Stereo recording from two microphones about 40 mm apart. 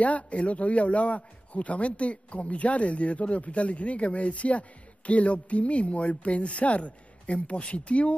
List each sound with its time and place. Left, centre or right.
0.0 s a man's voice: left